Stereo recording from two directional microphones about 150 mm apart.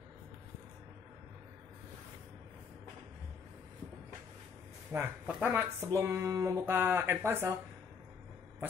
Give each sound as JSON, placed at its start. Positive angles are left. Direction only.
{"t": 4.9, "sound": "speech", "side_deg": -15}